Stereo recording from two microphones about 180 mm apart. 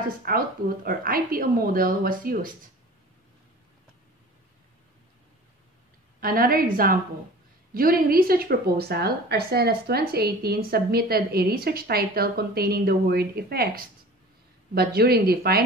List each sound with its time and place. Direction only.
0.3 s a woman's voice: 55° right (ahead or behind)
6.2 s a woman's voice: 55° right (ahead or behind)